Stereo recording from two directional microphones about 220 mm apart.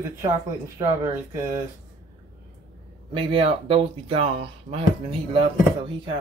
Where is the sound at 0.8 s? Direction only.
20° right (ahead or behind).